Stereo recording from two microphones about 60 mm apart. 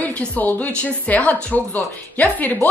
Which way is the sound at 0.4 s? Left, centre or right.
Left.